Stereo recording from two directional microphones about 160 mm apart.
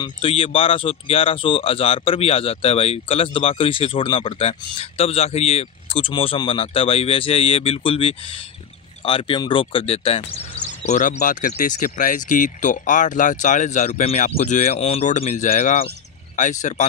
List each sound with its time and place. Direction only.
0.0 s speech: 35° left (ahead or behind); by 14.9 s 55° left (ahead or behind)
14.9 s speech: 40° left (ahead or behind)